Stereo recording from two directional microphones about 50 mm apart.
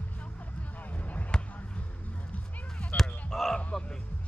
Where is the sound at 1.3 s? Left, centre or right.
Centre.